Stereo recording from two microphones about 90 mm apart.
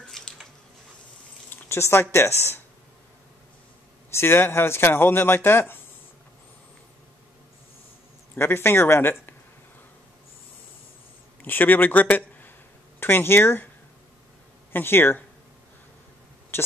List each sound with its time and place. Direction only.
0.1 s a sound: 5° left (ahead or behind)
1.5 s speech: 30° left (ahead or behind)
4.1 s speech: 25° left (ahead or behind)
8.4 s speech: 25° left (ahead or behind)
11.4 s a man's voice: 20° left (ahead or behind)
14.7 s speech: 25° left (ahead or behind)
16.5 s a sound: 25° left (ahead or behind)